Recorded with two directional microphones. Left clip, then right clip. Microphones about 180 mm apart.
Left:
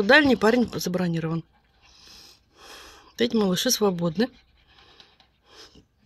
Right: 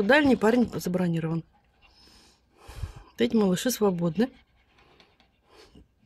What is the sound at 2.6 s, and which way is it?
Speech, 5° right (ahead or behind).